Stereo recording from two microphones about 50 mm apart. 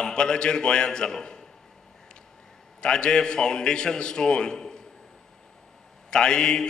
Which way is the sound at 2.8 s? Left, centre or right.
Centre.